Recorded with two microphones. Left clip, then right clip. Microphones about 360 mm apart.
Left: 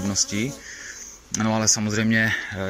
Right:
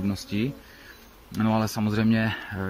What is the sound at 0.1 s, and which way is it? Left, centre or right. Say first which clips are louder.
Speech: left 6 dB; centre.